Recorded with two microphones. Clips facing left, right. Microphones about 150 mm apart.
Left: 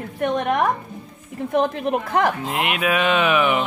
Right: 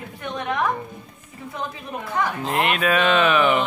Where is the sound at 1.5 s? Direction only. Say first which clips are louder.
Left 12 dB; 75° left (ahead or behind).